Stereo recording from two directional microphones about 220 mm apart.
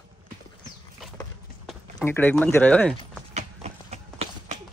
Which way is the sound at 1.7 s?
5° left (ahead or behind).